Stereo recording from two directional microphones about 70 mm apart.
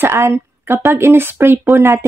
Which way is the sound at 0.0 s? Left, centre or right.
Right.